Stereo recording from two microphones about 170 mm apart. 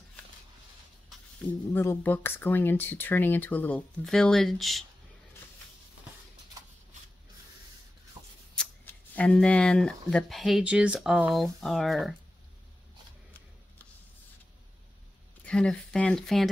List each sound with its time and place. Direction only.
1.7 s speech: 10° left (ahead or behind)
8.2 s a sound: 30° right (ahead or behind)
8.5 s speech: 10° left (ahead or behind)
15.4 s speech: 5° left (ahead or behind)